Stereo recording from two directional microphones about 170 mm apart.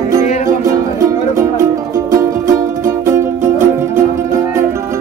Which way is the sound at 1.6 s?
20° right (ahead or behind).